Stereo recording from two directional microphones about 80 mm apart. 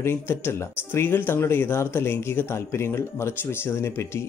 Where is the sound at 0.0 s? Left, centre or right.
Left.